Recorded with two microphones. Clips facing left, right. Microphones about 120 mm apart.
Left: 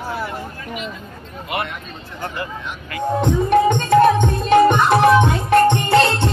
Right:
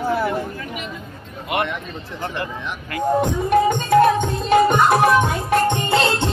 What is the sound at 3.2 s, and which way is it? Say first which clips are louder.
Music: left 4 dB; 5° right (ahead or behind).